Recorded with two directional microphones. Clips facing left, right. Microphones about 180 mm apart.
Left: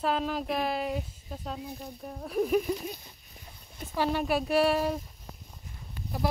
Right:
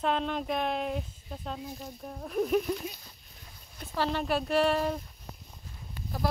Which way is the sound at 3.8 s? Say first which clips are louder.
Left 2 dB; 10° left (ahead or behind).